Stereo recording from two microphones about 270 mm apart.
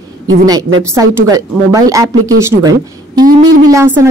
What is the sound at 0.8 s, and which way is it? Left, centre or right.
A woman's voice, centre.